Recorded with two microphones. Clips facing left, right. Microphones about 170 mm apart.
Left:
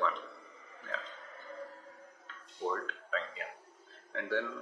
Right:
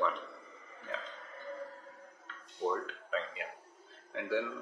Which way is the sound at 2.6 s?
10° right (ahead or behind).